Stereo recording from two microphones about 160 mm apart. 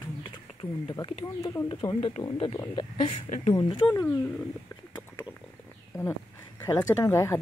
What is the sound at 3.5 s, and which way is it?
Speech, 30° left (ahead or behind).